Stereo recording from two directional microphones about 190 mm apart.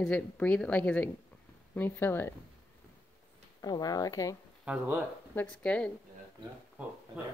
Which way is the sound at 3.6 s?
20° left (ahead or behind).